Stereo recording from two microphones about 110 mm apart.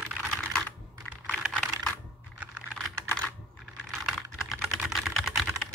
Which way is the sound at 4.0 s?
5° right (ahead or behind).